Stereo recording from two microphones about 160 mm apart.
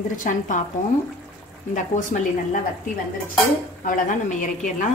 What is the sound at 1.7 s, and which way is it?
Speech, 50° left (ahead or behind).